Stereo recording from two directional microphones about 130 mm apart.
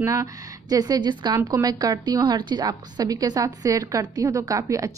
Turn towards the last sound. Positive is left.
turn(degrees=-25)  # may be behind; listen again after turning